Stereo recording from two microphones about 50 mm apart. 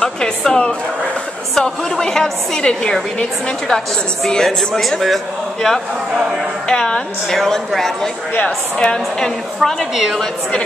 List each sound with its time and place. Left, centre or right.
0.0 s a woman's voice: centre
6.7 s a woman's voice: centre
9.9 s a woman's voice: centre